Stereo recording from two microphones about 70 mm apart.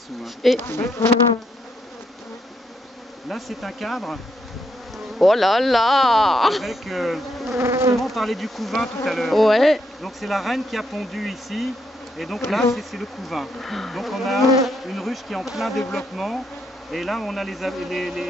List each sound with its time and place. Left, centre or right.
0.2 s insect: centre
0.7 s bee: left
3.3 s insect: centre
7.5 s bee: right
7.9 s insect: centre